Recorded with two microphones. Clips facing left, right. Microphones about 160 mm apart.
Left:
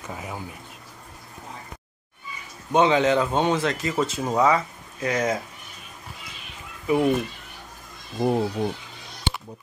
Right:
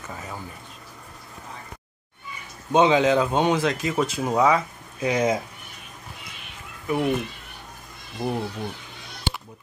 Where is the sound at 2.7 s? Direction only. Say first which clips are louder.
Right 1 dB; 15° right (ahead or behind).